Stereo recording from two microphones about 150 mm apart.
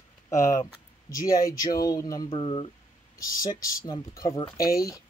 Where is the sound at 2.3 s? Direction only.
35° left (ahead or behind).